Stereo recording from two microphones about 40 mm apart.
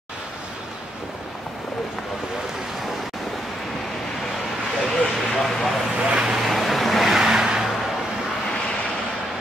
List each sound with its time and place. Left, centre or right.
4.8 s a sound: centre
6.0 s vehicle: centre
6.4 s vehicle: centre
7.2 s vehicle: centre